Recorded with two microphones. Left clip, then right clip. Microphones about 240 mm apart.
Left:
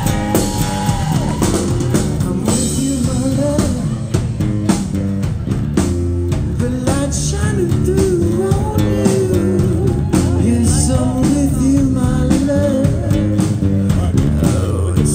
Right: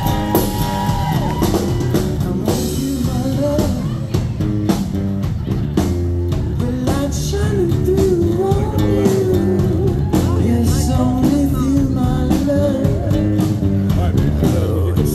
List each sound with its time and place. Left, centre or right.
8.5 s music: left
11.1 s music: left